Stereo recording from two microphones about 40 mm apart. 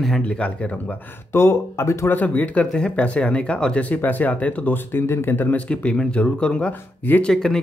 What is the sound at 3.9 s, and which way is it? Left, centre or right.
Speech, left.